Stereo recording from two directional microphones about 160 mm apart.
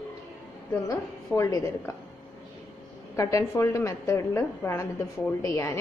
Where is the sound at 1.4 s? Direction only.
20° left (ahead or behind).